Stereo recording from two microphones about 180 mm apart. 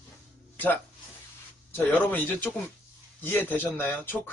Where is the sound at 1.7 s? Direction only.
10° left (ahead or behind).